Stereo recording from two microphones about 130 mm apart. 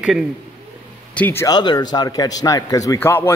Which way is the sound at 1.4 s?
30° left (ahead or behind).